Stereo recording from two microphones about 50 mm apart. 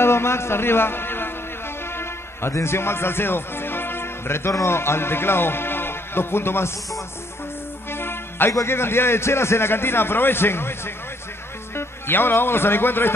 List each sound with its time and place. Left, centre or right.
0.0 s a sound: left
2.0 s music: left
4.5 s a man's voice: left
7.9 s music: left
8.6 s a man's voice: left
11.7 s a man's voice: left